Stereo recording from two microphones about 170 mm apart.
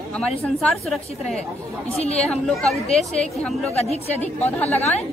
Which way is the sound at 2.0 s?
40° left (ahead or behind).